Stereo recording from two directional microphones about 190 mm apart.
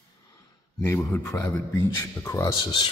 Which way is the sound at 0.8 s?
10° left (ahead or behind).